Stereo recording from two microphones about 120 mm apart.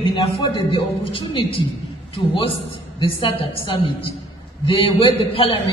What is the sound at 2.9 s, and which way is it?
A man's voice, 45° left (ahead or behind).